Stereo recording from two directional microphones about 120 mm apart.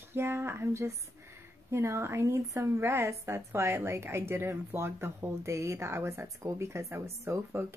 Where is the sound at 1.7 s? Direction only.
25° right (ahead or behind).